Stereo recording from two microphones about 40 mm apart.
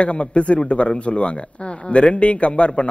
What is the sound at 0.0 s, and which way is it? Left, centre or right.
A man's voice, left.